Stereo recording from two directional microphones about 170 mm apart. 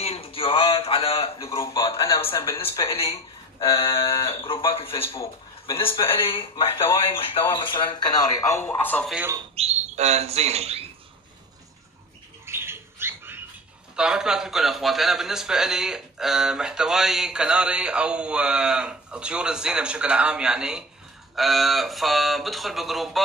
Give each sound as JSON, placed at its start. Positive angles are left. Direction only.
{"t": 0.0, "sound": "a sound", "side_deg": 35}
{"t": 2.3, "sound": "speech", "side_deg": 30}
{"t": 9.1, "sound": "speech", "side_deg": -10}
{"t": 9.6, "sound": "speech", "side_deg": -40}
{"t": 12.4, "sound": "rodents", "side_deg": -15}
{"t": 13.9, "sound": "a man's voice", "side_deg": -5}